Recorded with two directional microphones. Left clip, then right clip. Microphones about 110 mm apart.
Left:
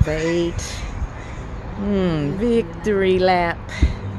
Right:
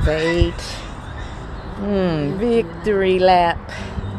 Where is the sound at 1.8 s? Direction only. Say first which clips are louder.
Right 2 dB; 35° left (ahead or behind).